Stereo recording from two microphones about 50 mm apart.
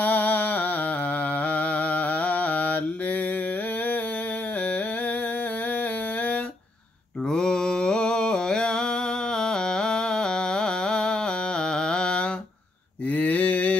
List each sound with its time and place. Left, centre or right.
0.0 s a sound: left
1.4 s mantra: left
7.2 s mantra: centre
13.1 s mantra: left